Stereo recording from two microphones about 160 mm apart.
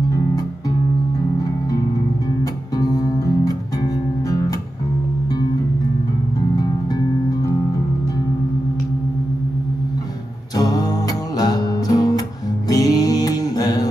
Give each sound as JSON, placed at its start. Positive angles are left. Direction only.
{"t": 2.7, "sound": "music", "side_deg": 25}
{"t": 6.5, "sound": "music", "side_deg": 25}
{"t": 10.5, "sound": "music", "side_deg": 25}